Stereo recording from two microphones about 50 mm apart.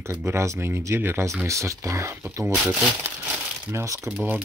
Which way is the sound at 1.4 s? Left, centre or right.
Right.